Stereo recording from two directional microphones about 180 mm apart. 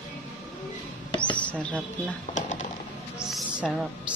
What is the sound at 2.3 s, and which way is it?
Typewriter, 45° left (ahead or behind).